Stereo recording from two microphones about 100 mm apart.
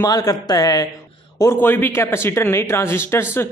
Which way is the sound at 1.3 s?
25° left (ahead or behind).